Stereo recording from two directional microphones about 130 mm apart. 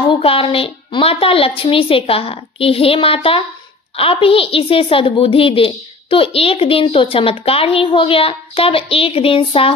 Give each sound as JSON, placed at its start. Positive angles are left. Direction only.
{"t": 0.0, "sound": "a woman's voice", "side_deg": 45}